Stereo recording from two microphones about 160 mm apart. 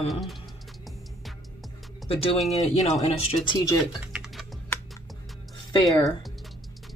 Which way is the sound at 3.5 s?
20° left (ahead or behind).